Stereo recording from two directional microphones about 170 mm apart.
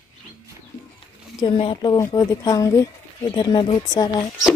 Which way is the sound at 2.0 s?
20° left (ahead or behind).